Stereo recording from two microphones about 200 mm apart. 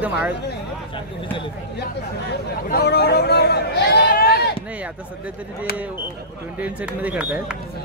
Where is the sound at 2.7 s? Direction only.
55° left (ahead or behind).